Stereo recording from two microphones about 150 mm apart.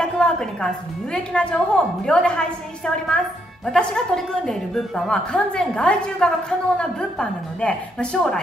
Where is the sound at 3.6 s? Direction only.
5° left (ahead or behind).